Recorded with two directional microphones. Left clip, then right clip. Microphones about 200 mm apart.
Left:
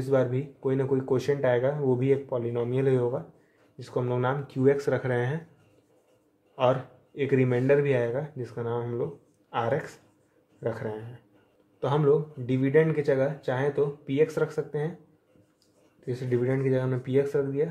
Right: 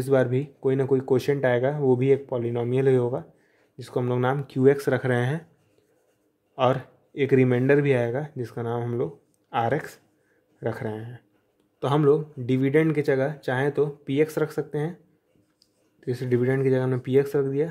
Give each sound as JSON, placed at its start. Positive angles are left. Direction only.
{"t": 0.0, "sound": "speech", "side_deg": -55}
{"t": 6.5, "sound": "speech", "side_deg": -55}
{"t": 16.1, "sound": "speech", "side_deg": -55}